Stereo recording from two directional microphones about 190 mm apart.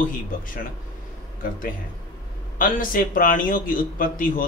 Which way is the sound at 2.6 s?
45° left (ahead or behind).